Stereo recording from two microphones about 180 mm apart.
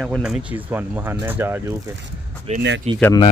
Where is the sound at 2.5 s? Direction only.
35° right (ahead or behind).